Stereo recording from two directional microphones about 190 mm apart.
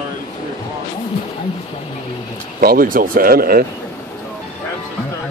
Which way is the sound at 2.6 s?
50° right (ahead or behind).